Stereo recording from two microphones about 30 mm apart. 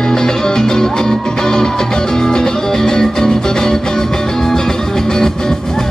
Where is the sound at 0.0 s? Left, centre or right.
Centre.